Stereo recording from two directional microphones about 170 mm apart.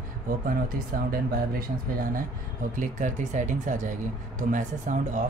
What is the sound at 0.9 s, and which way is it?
Speech, 50° right (ahead or behind).